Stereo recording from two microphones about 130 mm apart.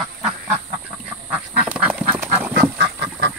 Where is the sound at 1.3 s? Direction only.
10° right (ahead or behind).